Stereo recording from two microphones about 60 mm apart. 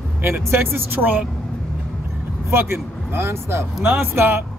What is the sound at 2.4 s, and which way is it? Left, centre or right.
Speech, right.